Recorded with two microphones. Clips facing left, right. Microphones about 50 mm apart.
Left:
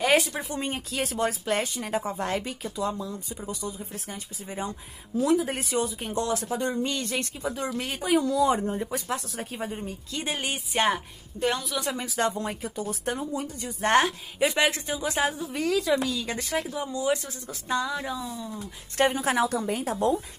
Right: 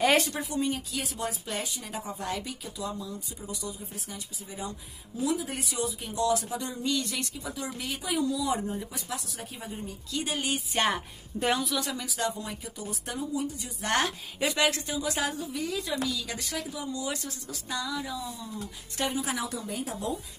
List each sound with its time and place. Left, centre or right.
0.0 s a woman's voice: centre
0.4 s a woman's voice: left
10.7 s a woman's voice: centre
11.3 s a woman's voice: centre
11.8 s a woman's voice: left
15.6 s a woman's voice: left
16.0 s a woman's voice: left
18.9 s speech: left